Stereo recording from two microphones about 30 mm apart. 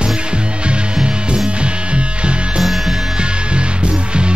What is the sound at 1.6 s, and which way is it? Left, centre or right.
Music, right.